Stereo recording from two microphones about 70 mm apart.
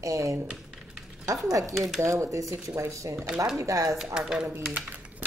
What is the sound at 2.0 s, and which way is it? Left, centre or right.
A woman's voice, right.